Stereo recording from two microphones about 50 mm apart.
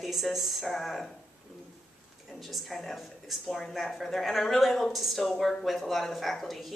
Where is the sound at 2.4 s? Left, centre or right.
Centre.